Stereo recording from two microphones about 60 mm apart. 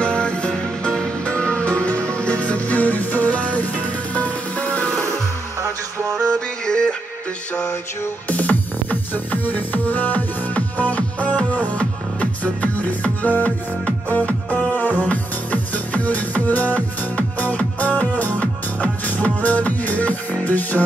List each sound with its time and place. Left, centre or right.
0.0 s music: centre
6.6 s music: centre
8.3 s music: left